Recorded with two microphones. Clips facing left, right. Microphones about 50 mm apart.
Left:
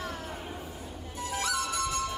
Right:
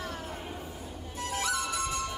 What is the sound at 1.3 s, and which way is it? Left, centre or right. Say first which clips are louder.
Music: even; centre.